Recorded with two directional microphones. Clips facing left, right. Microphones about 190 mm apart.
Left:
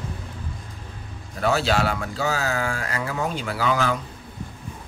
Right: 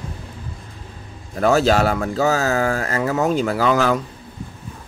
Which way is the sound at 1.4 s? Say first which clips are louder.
Right 6 dB; 45° right (ahead or behind).